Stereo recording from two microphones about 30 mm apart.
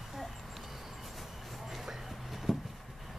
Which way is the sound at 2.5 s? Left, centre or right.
Centre.